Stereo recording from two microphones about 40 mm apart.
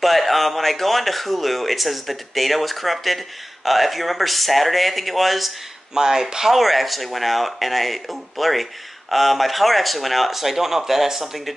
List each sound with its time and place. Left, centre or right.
0.0 s speech: centre
5.9 s speech: centre